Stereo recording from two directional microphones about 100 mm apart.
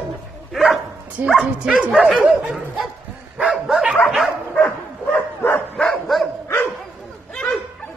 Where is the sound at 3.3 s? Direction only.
5° right (ahead or behind).